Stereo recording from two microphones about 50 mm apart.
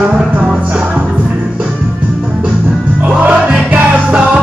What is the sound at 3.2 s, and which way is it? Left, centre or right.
Music, right.